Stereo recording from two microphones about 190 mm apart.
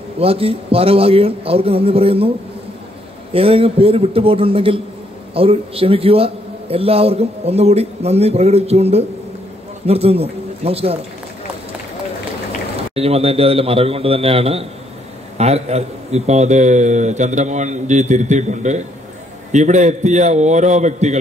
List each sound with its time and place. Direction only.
0.2 s a man's voice: 30° right (ahead or behind)
3.3 s a man's voice: 30° right (ahead or behind)
12.9 s a man's voice: 30° right (ahead or behind)